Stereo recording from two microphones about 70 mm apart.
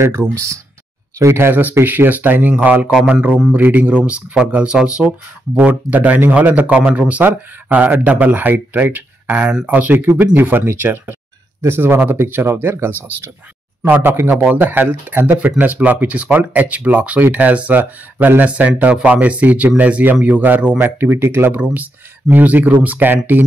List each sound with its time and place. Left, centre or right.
0.0 s a man's voice: right
22.3 s speech: right